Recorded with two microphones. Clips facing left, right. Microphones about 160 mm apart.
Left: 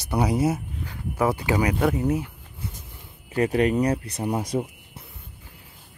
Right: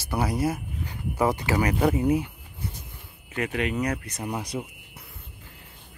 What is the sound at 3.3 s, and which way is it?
Speech, 35° left (ahead or behind).